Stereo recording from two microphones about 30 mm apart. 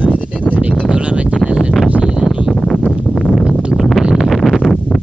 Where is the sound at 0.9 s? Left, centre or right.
Right.